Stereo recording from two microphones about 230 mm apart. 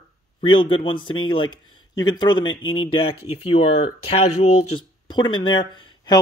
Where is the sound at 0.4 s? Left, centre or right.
Left.